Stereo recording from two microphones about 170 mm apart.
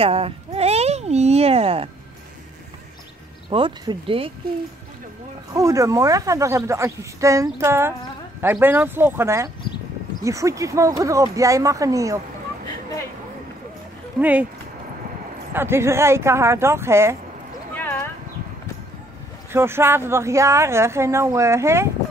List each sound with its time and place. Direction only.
0.0 s speech: 35° right (ahead or behind)
3.4 s speech: 25° right (ahead or behind)
5.5 s speech: 20° right (ahead or behind)
15.5 s speech: 15° right (ahead or behind)
17.7 s horse: 10° left (ahead or behind)
19.5 s speech: 15° right (ahead or behind)